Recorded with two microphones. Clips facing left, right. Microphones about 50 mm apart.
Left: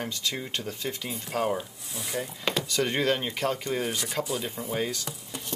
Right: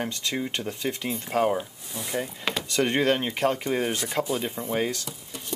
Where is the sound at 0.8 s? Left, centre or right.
Centre.